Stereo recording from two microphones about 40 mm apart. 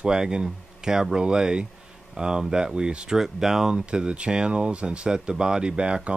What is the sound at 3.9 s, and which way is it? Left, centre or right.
Speech, right.